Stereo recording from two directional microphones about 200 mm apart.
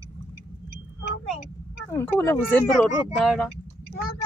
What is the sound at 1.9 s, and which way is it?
Speech, 10° left (ahead or behind).